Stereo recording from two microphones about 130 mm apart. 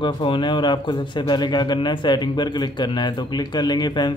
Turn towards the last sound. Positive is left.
turn(degrees=35)  # may be behind; listen again after turning